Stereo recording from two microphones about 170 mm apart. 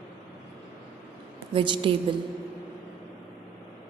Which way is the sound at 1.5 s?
30° right (ahead or behind).